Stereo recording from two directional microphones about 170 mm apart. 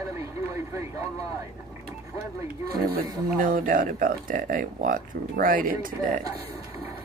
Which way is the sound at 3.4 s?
55° right (ahead or behind).